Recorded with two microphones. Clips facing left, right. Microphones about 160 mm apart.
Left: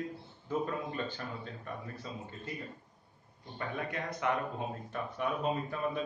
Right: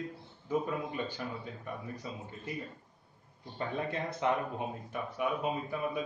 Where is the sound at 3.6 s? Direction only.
25° right (ahead or behind).